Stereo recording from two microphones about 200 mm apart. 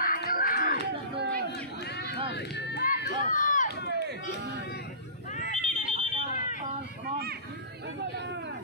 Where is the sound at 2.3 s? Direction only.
60° left (ahead or behind); by 3.6 s 40° left (ahead or behind).